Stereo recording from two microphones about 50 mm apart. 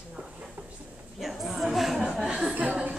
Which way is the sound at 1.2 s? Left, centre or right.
Centre.